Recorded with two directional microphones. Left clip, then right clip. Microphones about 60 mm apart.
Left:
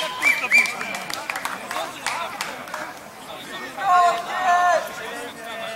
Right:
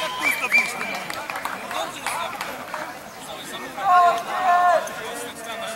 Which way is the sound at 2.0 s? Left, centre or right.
Left.